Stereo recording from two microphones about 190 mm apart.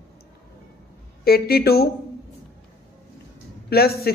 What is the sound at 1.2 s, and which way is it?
Speech, 55° left (ahead or behind).